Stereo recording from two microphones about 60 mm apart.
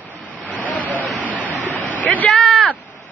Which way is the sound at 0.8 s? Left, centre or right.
Right.